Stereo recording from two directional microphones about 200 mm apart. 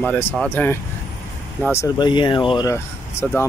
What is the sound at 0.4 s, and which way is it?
Speech, 10° left (ahead or behind).